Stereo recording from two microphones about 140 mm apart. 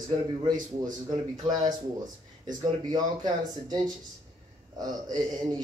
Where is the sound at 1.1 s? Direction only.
30° right (ahead or behind).